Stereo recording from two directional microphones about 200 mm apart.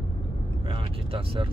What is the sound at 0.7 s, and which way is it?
Vehicle, 25° right (ahead or behind).